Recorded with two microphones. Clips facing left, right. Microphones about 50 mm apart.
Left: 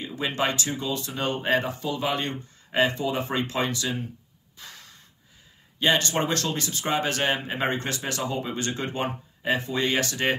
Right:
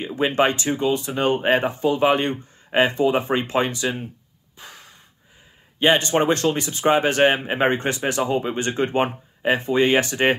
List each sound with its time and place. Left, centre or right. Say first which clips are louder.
0.0 s speech: right 7 dB; right
4.6 s breathing: right 3 dB; right
5.8 s speech: right 5 dB; right